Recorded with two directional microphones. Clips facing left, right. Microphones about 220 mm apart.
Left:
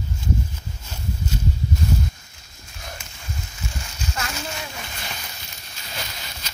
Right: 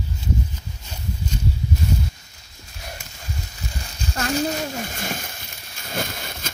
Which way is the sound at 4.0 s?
35° right (ahead or behind).